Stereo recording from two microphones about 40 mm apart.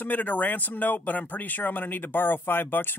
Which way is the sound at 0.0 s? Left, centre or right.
Left.